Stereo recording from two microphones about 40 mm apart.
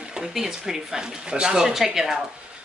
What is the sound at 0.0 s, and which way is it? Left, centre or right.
Speech, centre.